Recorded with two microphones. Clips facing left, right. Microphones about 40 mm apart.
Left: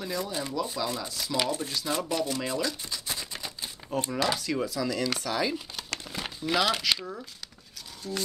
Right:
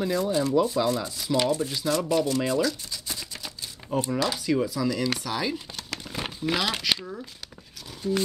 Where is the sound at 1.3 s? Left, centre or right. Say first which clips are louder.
Right 5 dB; centre.